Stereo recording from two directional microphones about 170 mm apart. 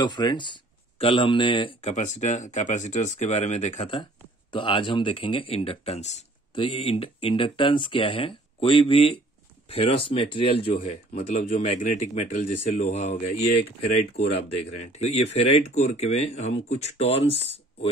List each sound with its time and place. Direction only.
0.0 s speech: 25° left (ahead or behind)
2.0 s speech: 45° left (ahead or behind)
14.9 s speech: 40° left (ahead or behind)